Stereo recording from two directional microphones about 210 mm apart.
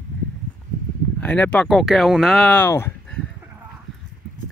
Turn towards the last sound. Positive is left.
turn(degrees=10)  # may be behind; listen again after turning